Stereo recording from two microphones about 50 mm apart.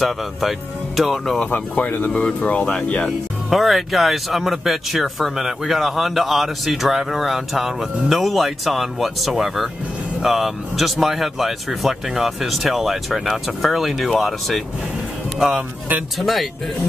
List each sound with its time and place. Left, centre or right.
0.0 s speech: centre
1.5 s speech: left
2.2 s speech: centre
3.4 s speech: centre